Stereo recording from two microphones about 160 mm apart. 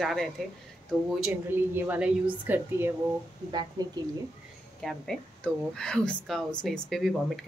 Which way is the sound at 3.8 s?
25° right (ahead or behind).